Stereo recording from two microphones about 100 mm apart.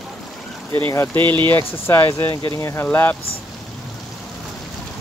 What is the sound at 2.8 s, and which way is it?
Speech, 20° left (ahead or behind).